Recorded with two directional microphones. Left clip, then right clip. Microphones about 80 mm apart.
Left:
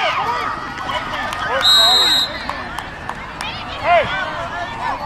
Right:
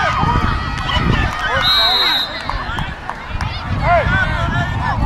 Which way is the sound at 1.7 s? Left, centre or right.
Right.